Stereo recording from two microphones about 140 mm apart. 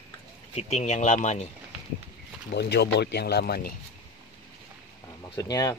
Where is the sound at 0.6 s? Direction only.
50° left (ahead or behind).